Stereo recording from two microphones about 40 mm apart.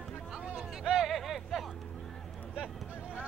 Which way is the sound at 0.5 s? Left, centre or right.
Centre.